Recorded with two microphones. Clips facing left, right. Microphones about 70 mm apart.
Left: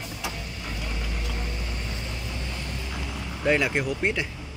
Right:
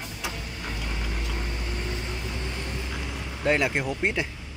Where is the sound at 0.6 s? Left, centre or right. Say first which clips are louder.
Right 1 dB; right.